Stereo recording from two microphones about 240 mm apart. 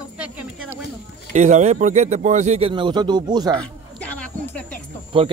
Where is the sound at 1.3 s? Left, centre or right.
Right.